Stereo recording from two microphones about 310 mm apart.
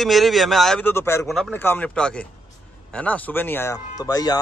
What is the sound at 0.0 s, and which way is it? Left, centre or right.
A man's voice, centre.